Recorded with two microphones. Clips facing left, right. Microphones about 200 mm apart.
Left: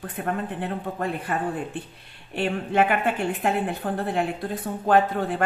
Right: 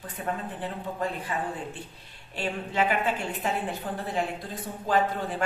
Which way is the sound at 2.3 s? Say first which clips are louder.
Left 6 dB; 60° left (ahead or behind).